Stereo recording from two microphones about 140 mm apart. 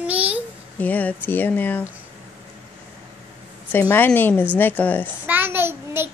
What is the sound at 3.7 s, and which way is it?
Speech, 15° left (ahead or behind).